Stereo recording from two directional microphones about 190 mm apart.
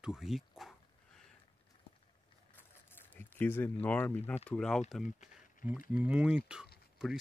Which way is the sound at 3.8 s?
10° left (ahead or behind).